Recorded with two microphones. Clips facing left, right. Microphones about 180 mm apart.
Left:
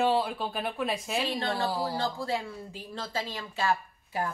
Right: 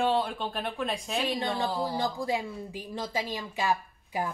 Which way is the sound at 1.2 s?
15° right (ahead or behind).